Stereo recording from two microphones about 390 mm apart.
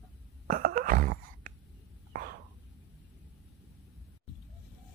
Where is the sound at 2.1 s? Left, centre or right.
Right.